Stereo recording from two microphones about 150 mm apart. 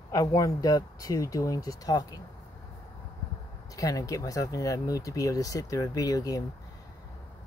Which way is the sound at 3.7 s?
20° left (ahead or behind).